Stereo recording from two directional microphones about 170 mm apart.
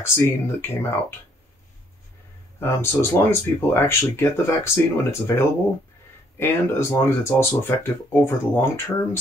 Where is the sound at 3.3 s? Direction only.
15° left (ahead or behind).